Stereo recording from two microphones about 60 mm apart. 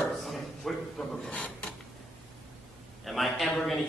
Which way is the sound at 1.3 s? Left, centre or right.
Left.